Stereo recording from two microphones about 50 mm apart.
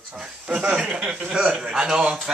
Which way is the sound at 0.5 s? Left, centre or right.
Right.